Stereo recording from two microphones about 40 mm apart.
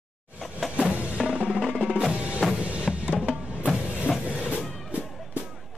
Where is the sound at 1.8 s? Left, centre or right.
Right.